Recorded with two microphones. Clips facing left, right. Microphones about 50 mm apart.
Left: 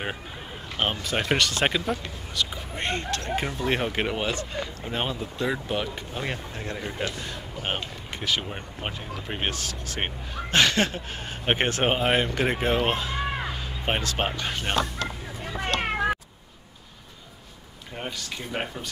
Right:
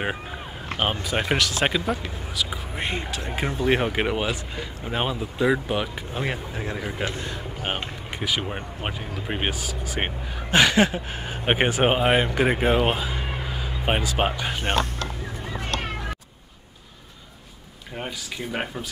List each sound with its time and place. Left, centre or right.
1.3 s speech: centre
3.4 s speech: centre
3.7 s speech: centre
7.1 s a man's voice: right
7.6 s speech: centre
15.8 s cat: left
17.9 s speech: centre